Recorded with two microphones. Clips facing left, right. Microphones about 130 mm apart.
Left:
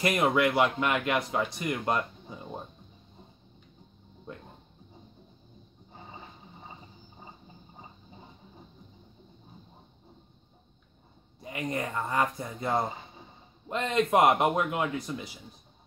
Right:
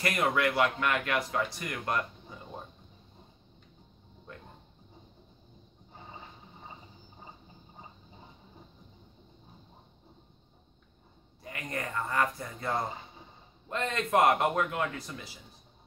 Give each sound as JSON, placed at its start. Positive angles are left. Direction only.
{"t": 0.0, "sound": "a man's voice", "side_deg": 20}
{"t": 11.4, "sound": "a man's voice", "side_deg": 20}